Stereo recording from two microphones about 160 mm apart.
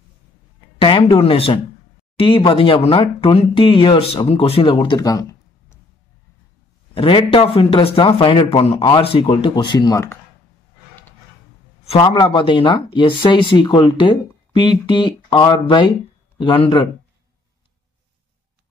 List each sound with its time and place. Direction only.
0.7 s speech: 35° left (ahead or behind)
6.9 s speech: 35° left (ahead or behind)
11.9 s speech: 30° left (ahead or behind)